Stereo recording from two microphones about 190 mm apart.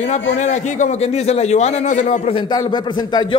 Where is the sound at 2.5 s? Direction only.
20° left (ahead or behind).